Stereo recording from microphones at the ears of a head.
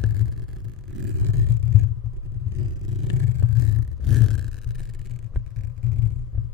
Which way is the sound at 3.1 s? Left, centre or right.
Left.